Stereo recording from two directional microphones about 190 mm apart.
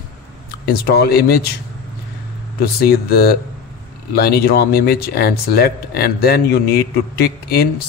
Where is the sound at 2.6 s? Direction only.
55° left (ahead or behind).